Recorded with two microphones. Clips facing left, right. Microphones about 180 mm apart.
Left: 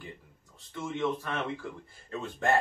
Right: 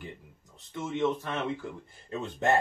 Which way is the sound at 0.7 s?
20° right (ahead or behind).